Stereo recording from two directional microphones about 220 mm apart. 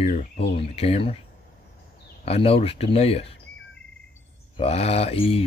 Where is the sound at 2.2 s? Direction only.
25° left (ahead or behind).